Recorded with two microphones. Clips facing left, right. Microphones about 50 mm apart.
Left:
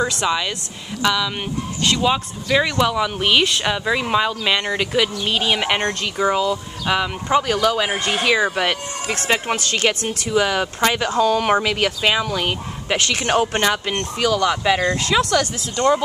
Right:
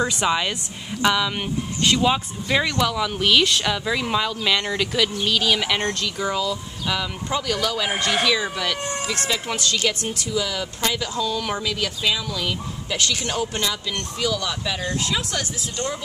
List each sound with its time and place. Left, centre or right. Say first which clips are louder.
0.1 s a woman's voice: left 1 dB; centre
1.4 s speech: left 1 dB; centre
2.6 s speech: left 3 dB; centre; by 16.0 s left